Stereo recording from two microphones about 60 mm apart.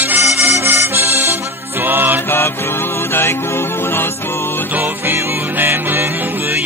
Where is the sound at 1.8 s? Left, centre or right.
Right.